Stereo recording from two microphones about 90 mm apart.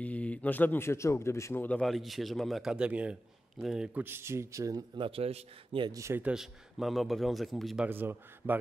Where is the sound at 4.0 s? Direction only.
25° right (ahead or behind).